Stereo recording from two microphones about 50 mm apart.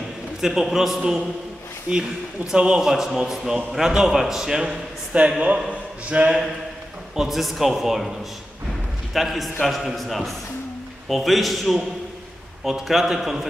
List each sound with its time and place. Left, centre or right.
0.4 s a man's voice: centre
1.9 s a man's voice: centre
2.9 s a man's voice: centre
5.4 s a man's voice: right
7.2 s a man's voice: centre
9.1 s a man's voice: centre